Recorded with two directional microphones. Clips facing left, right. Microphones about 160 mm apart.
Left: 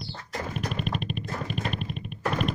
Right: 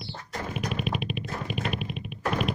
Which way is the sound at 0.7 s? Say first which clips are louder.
Right 1 dB; 5° right (ahead or behind).